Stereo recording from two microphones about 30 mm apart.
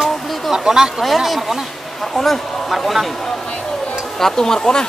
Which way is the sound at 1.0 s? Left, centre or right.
Centre.